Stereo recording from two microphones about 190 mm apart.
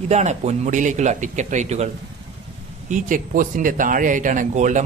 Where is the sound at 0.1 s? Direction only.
35° right (ahead or behind).